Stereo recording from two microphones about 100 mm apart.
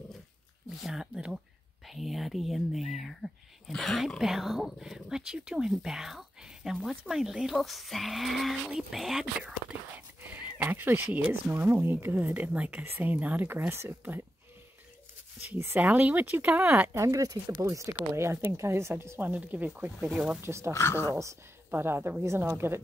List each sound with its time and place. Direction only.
0.7 s speech: 5° right (ahead or behind)
10.2 s speech: 20° right (ahead or behind)
15.5 s speech: 20° right (ahead or behind)
17.0 s speech: 35° right (ahead or behind); by 20.3 s 10° right (ahead or behind)
20.4 s speech: 25° right (ahead or behind)
20.7 s speech: 25° left (ahead or behind)
21.1 s speech: 30° right (ahead or behind)